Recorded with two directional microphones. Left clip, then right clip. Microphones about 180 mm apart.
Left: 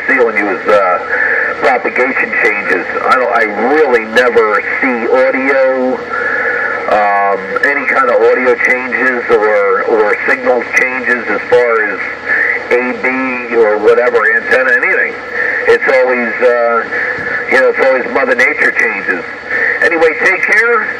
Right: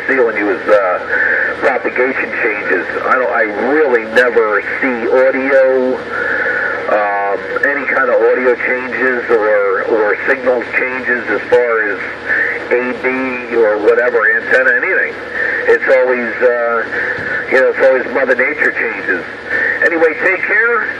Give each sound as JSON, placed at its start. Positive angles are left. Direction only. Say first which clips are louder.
{"t": 0.1, "sound": "speech", "louder": "left 2 dB", "side_deg": 40}
{"t": 6.9, "sound": "speech", "louder": "left 5 dB", "side_deg": 40}
{"t": 13.7, "sound": "speech", "louder": "left 2 dB", "side_deg": 35}